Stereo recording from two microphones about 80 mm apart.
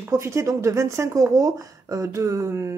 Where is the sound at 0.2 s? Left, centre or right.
Right.